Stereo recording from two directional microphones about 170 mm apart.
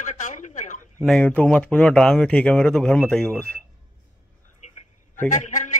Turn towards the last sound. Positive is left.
turn(degrees=45)  # may be behind; listen again after turning